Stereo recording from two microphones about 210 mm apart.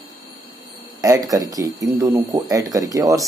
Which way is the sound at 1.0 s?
15° right (ahead or behind).